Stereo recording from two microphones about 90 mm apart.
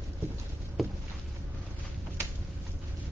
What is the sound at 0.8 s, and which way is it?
Boat, centre (ahead or behind).